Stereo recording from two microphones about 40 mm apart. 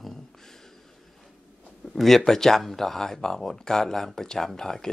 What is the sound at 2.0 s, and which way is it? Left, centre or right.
Speech, centre.